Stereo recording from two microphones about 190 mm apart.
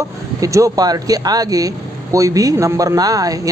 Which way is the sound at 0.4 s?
15° right (ahead or behind).